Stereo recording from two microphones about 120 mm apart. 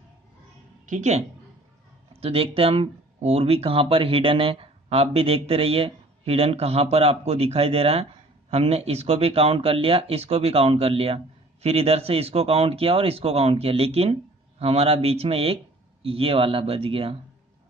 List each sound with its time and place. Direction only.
0.8 s a woman's voice: 80° right
2.1 s a man's voice: 55° right (ahead or behind)